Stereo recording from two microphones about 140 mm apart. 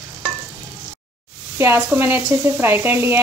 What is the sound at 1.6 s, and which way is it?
Speech, 15° right (ahead or behind).